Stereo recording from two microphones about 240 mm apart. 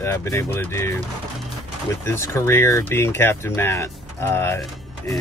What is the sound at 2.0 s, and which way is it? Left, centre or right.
Speech, centre.